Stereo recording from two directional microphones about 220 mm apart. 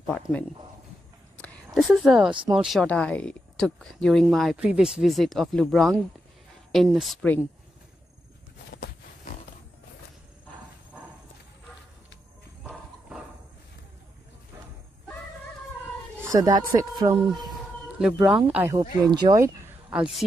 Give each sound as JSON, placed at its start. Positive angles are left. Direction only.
{"t": 1.4, "sound": "a sound", "side_deg": 5}
{"t": 2.4, "sound": "speech", "side_deg": -5}
{"t": 8.7, "sound": "a sound", "side_deg": 45}
{"t": 16.2, "sound": "speech", "side_deg": -15}
{"t": 18.2, "sound": "speech", "side_deg": -5}
{"t": 19.9, "sound": "speech", "side_deg": 0}